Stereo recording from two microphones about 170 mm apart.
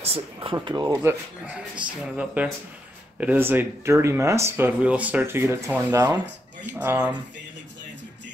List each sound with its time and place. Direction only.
0.0 s speech: 35° right (ahead or behind)
0.9 s speech: 10° right (ahead or behind)